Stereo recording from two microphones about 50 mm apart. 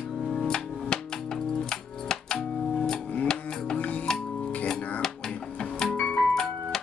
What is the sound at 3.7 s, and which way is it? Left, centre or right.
Music, left.